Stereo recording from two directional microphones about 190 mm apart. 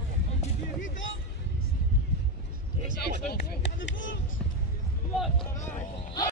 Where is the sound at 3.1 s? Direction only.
60° left (ahead or behind).